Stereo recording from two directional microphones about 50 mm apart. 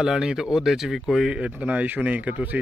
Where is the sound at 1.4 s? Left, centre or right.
Right.